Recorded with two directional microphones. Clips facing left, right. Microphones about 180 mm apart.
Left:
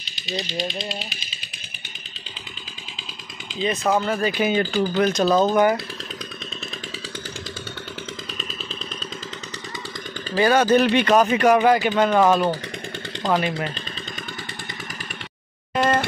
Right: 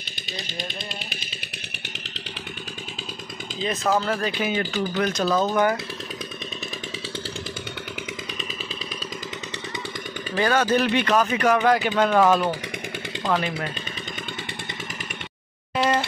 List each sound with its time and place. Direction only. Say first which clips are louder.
3.6 s speech: left 2 dB; centre (ahead or behind)
4.6 s speech: left 4 dB; 30° left (ahead or behind)
5.0 s a man's voice: left 4 dB; 20° left (ahead or behind)
10.3 s speech: left 4 dB; 10° left (ahead or behind)
10.6 s a man's voice: left 4 dB; 20° left (ahead or behind)
11.6 s speech: left 2 dB; centre (ahead or behind)
13.3 s speech: left 3 dB; 20° left (ahead or behind)
15.8 s a sound: left 2 dB; 50° left (ahead or behind)